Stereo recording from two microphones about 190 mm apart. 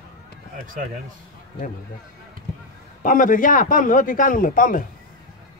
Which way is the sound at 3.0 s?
45° left (ahead or behind).